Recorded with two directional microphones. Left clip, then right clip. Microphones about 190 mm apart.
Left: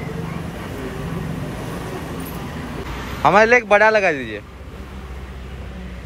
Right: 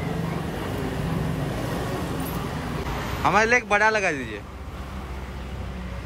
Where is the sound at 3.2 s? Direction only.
5° right (ahead or behind).